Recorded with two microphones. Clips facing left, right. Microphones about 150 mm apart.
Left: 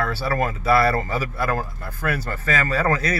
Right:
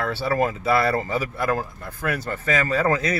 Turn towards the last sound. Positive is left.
turn(degrees=-20)  # may be behind; listen again after turning